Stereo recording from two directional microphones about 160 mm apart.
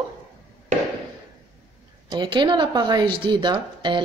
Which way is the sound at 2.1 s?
30° right (ahead or behind).